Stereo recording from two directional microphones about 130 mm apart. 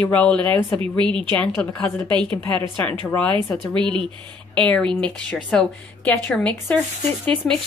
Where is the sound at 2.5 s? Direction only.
10° left (ahead or behind).